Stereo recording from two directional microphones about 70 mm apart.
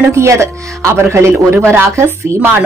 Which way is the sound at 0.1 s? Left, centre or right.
Right.